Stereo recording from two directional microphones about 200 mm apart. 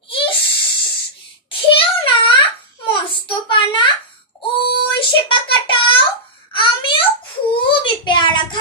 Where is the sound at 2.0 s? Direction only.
25° left (ahead or behind).